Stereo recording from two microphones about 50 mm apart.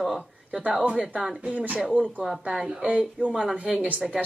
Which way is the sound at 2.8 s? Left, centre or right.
Right.